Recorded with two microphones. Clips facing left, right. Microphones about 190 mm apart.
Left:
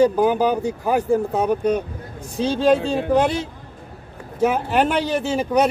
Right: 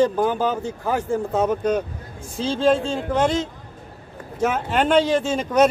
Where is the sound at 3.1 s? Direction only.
15° left (ahead or behind).